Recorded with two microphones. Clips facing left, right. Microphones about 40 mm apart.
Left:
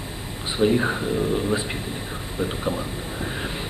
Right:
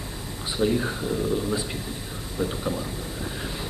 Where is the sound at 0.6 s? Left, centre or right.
Left.